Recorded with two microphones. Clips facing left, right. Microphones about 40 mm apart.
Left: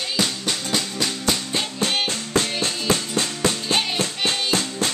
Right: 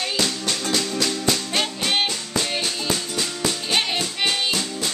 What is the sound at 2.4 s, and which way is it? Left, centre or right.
Music, left.